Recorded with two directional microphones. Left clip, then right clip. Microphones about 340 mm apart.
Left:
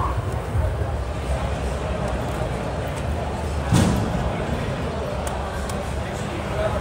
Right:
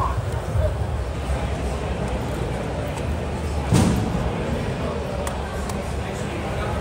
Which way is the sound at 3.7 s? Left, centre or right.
Centre.